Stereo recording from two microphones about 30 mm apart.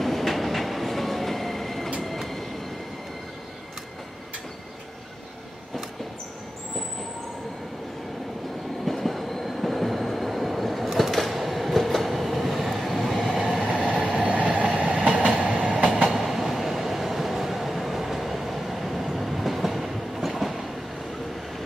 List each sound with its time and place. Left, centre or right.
0.0 s train: centre
8.8 s train: centre
13.5 s train: centre
14.2 s train: right
14.7 s train: centre
15.2 s train: right
16.0 s train: centre